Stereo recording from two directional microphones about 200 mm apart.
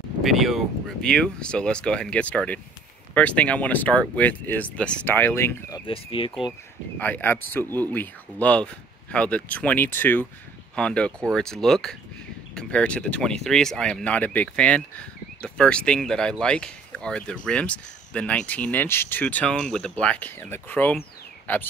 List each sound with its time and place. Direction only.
0.2 s speech: centre (ahead or behind)
5.9 s speech: 25° left (ahead or behind)
7.0 s speech: 10° left (ahead or behind)